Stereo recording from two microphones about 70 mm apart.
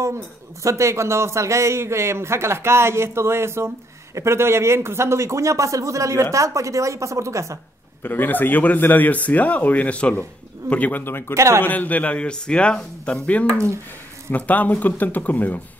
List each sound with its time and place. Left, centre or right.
0.7 s a man's voice: right
8.0 s a man's voice: left
11.3 s speech: right
11.6 s a man's voice: left